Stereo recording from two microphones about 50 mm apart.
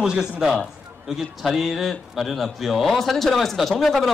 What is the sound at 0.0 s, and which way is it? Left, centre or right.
A man's voice, centre.